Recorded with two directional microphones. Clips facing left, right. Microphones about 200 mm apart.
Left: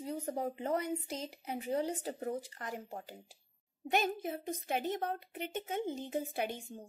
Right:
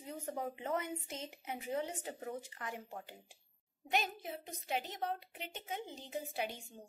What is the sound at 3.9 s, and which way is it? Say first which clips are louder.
A woman's voice: left 5 dB; 50° left (ahead or behind).